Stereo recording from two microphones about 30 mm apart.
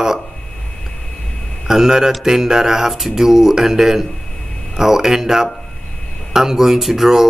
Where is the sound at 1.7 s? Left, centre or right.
Centre.